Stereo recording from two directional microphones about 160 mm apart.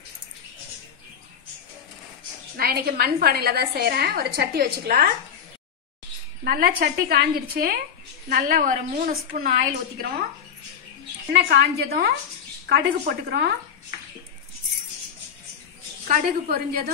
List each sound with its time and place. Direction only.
2.5 s a woman's voice: 70° right (ahead or behind)
6.4 s a woman's voice: 65° right (ahead or behind)
11.3 s a woman's voice: 80° right
12.6 s a woman's voice: 90° right
16.1 s a woman's voice: 75° right (ahead or behind)